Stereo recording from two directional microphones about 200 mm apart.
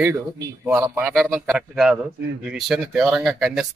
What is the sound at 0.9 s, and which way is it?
A man's voice, 5° right (ahead or behind).